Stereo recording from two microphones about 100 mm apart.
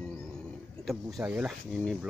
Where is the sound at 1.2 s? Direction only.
10° right (ahead or behind).